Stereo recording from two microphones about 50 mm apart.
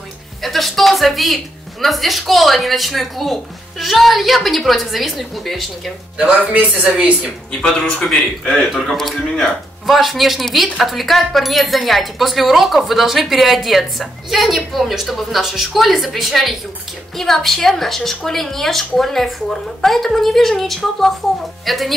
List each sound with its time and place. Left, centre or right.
0.4 s speech: centre
6.1 s speech: right
8.0 s speech: centre